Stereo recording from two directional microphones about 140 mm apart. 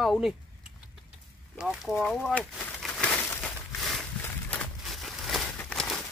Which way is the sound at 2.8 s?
5° left (ahead or behind).